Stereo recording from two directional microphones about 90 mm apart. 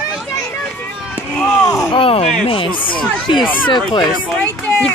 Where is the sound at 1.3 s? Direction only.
5° left (ahead or behind).